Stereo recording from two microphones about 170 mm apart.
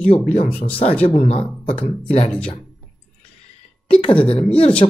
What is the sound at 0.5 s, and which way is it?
Speech, 35° left (ahead or behind).